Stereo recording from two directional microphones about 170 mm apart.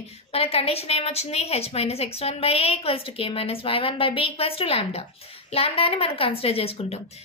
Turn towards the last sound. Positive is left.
turn(degrees=35)  # may be behind; listen again after turning